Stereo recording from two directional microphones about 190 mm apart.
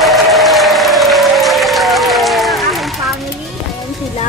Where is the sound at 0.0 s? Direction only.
Centre (ahead or behind).